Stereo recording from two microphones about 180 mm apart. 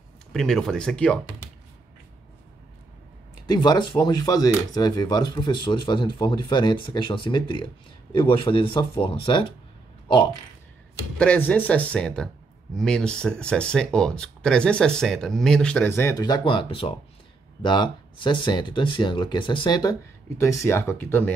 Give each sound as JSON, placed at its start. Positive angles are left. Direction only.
{"t": 0.3, "sound": "speech", "side_deg": 5}
{"t": 3.4, "sound": "speech", "side_deg": 20}
{"t": 11.1, "sound": "speech", "side_deg": 10}